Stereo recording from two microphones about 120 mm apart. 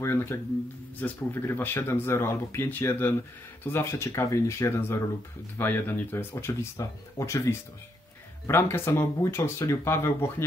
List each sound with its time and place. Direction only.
0.0 s speech: 20° left (ahead or behind)